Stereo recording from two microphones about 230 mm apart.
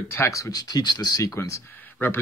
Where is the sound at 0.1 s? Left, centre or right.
Centre.